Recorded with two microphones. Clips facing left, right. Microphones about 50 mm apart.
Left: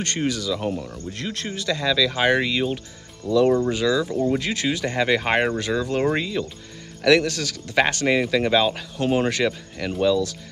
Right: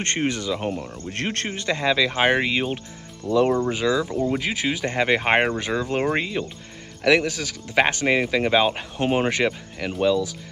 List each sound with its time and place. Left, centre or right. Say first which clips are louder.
0.0 s speech: even; right
1.1 s speech: right 5 dB; right
1.5 s speech: even; right; by 10.3 s centre